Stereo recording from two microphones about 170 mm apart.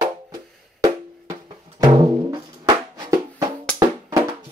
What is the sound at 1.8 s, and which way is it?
Music, 20° right (ahead or behind).